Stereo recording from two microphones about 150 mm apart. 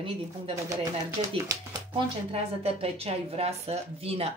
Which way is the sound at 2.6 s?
40° right (ahead or behind).